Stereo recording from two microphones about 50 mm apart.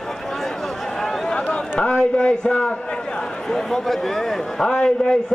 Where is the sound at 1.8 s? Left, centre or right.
Centre.